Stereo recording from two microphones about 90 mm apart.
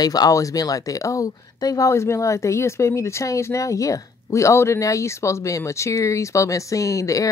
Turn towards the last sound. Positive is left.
turn(degrees=35)  # may be behind; listen again after turning